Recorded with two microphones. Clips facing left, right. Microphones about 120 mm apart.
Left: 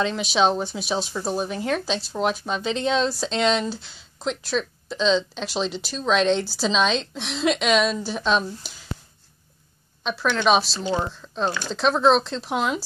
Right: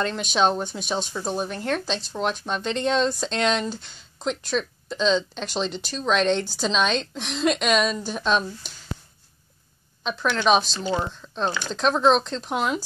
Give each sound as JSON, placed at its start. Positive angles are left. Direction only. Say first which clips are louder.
{"t": 0.0, "sound": "speech", "louder": "left 1 dB", "side_deg": 0}
{"t": 10.0, "sound": "speech", "louder": "left 1 dB", "side_deg": 0}